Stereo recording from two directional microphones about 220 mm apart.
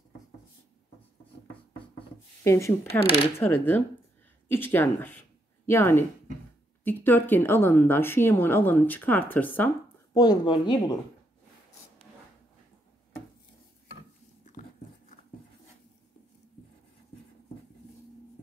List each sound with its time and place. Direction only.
2.4 s speech: 10° left (ahead or behind)
10.1 s speech: 20° left (ahead or behind)